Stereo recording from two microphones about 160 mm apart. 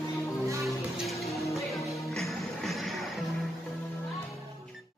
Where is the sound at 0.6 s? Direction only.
Centre (ahead or behind).